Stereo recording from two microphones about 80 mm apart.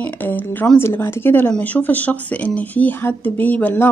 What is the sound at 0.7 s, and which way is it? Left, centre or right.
A woman's voice, left.